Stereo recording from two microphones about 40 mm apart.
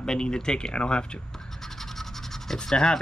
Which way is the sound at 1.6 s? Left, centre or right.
Centre.